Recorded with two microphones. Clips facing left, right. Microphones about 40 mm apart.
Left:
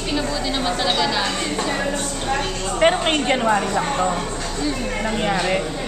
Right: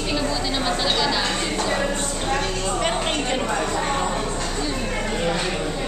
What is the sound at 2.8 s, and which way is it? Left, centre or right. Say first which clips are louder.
A woman's voice: left 9 dB; left.